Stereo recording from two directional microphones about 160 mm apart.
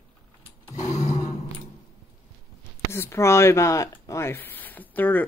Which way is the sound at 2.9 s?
15° left (ahead or behind).